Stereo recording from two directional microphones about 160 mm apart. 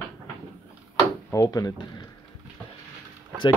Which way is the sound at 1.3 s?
20° left (ahead or behind).